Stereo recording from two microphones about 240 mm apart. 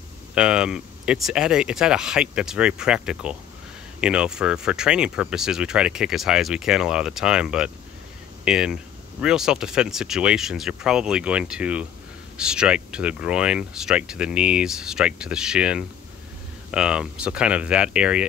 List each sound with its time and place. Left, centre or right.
0.3 s speech: centre